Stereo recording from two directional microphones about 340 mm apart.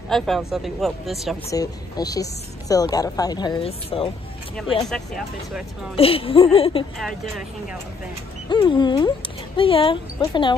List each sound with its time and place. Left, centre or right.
0.1 s speech: centre
1.5 s speech: centre
4.8 s speech: centre
5.9 s speech: centre
7.0 s speech: centre
8.5 s speech: centre